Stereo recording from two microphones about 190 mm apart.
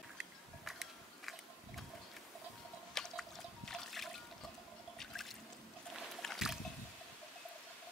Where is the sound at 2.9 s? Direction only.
Centre (ahead or behind).